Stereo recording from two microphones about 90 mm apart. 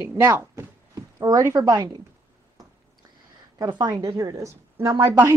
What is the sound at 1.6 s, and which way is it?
Speech, 50° right (ahead or behind).